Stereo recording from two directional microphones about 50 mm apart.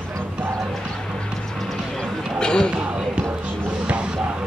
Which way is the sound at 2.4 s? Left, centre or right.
Centre.